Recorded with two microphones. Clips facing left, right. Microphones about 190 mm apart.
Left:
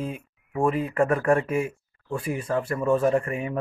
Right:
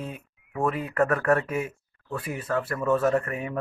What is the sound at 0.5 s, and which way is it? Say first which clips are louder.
Speech: left 3 dB; 30° left (ahead or behind).